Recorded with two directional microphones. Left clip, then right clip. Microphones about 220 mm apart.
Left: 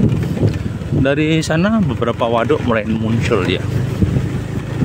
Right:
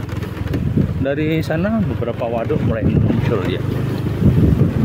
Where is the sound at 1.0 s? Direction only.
15° left (ahead or behind).